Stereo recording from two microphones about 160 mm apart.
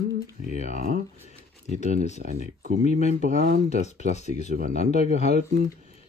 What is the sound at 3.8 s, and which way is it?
Speech, 45° left (ahead or behind).